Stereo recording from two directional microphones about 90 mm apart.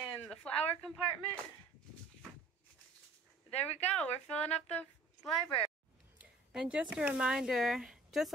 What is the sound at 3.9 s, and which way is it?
A woman's voice, 10° left (ahead or behind).